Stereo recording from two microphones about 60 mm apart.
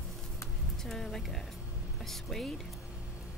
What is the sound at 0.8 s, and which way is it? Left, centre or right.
Speech, centre.